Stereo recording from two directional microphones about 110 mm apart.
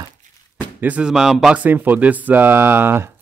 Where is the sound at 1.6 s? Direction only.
15° right (ahead or behind).